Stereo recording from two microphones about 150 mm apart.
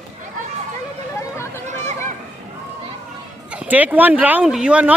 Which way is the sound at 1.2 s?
15° left (ahead or behind).